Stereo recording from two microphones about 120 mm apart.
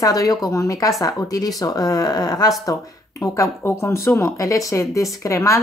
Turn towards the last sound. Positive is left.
turn(degrees=25)  # may be behind; listen again after turning